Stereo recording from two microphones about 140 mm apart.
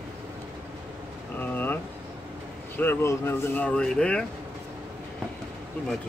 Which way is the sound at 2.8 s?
15° left (ahead or behind).